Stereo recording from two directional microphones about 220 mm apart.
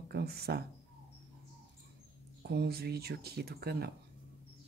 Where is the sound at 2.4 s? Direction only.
45° right (ahead or behind).